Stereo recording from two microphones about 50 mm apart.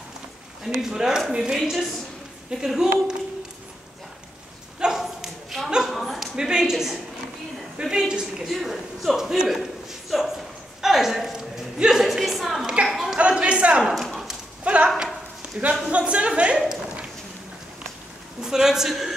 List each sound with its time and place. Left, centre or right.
0.7 s a woman's voice: centre
4.7 s a sound: centre
5.0 s a sound: centre
6.3 s a woman's voice: centre
8.1 s a woman's voice: centre
8.5 s speech: centre
9.5 s a sound: centre
13.2 s a man's voice: right
13.9 s clip-clop: centre
14.6 s a woman's voice: right
18.4 s a woman's voice: centre